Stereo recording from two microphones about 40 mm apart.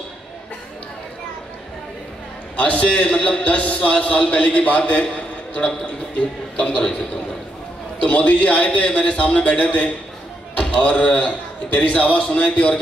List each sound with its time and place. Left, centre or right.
2.6 s a man's voice: left
8.0 s a man's voice: left